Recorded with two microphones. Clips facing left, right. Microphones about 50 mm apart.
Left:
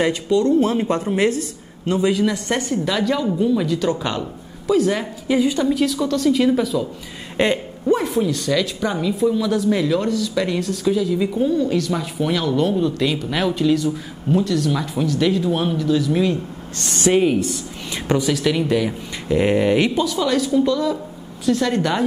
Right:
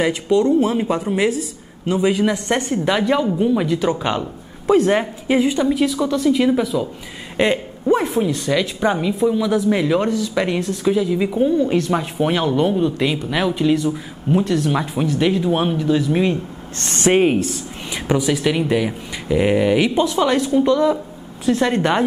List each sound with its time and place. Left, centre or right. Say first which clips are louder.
0.1 s speech: right 1 dB; centre
0.6 s speech: even; centre
2.0 s speech: right 2 dB; right
4.6 s speech: right 3 dB; right
5.6 s speech: right 1 dB; centre
13.7 s speech: right 1 dB; right
16.9 s speech: right 1 dB; right
17.9 s speech: right 1 dB; centre
20.0 s speech: right 2 dB; right